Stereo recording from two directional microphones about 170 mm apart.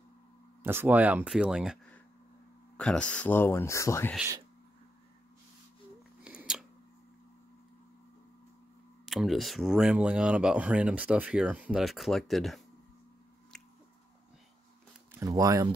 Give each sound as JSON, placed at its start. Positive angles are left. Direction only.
{"t": 0.7, "sound": "speech", "side_deg": -10}
{"t": 2.8, "sound": "speech", "side_deg": 5}
{"t": 6.2, "sound": "a sound", "side_deg": -5}
{"t": 9.0, "sound": "speech", "side_deg": 0}
{"t": 15.1, "sound": "speech", "side_deg": -20}